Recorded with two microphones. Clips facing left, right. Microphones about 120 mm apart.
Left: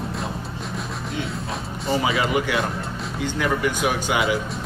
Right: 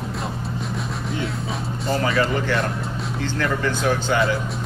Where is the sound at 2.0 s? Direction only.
10° left (ahead or behind).